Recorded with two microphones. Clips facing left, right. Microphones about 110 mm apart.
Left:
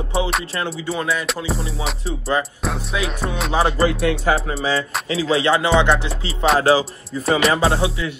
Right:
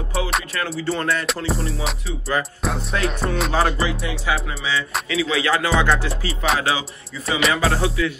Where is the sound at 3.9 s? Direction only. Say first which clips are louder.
Left 7 dB; 65° left (ahead or behind).